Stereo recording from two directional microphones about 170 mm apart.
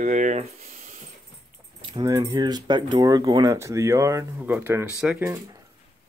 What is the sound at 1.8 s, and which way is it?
Speech, 25° right (ahead or behind).